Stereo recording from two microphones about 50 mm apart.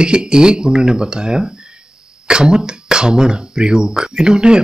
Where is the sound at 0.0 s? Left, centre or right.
Centre.